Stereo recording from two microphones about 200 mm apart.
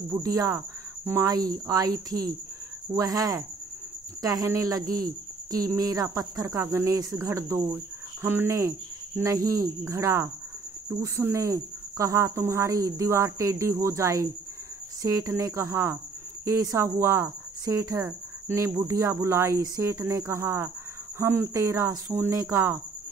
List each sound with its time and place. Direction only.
0.1 s cricket: 15° right (ahead or behind)
1.7 s speech: 20° right (ahead or behind)